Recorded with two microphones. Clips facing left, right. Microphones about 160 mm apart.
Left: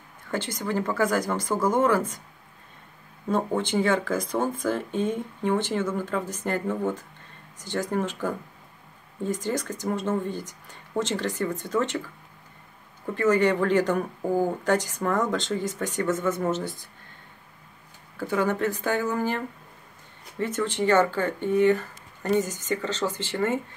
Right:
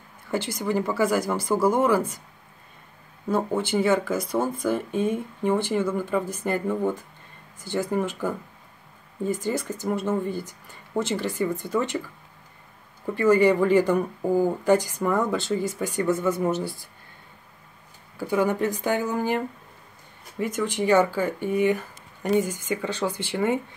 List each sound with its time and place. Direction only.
0.3 s speech: 10° right (ahead or behind)
3.3 s speech: 5° right (ahead or behind)
13.1 s speech: 10° right (ahead or behind)
18.1 s speech: 15° right (ahead or behind)